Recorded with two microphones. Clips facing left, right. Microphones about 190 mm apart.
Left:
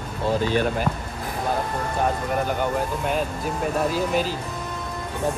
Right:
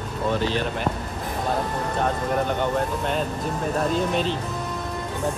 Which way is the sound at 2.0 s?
5° left (ahead or behind).